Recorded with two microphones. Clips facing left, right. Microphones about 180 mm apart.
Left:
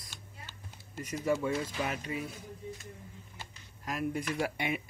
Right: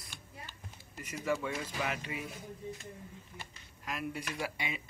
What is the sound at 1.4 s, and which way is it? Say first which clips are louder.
Speech: left 4 dB; 35° left (ahead or behind).